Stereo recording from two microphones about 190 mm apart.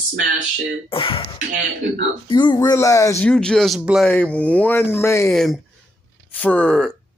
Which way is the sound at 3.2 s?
5° left (ahead or behind).